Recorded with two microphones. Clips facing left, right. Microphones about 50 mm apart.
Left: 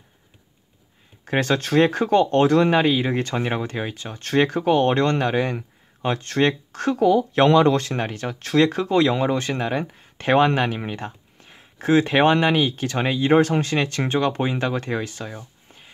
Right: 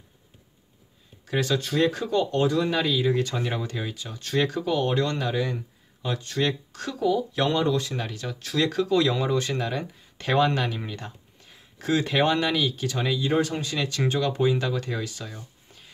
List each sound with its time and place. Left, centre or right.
1.2 s speech: left